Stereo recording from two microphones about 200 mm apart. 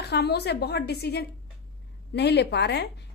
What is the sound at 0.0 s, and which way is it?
A woman's voice, 55° left (ahead or behind).